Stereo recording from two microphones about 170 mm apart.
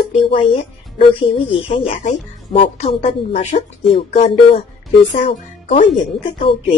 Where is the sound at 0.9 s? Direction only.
30° left (ahead or behind).